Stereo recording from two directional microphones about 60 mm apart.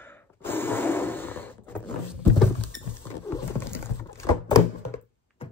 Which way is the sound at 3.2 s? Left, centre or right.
Left.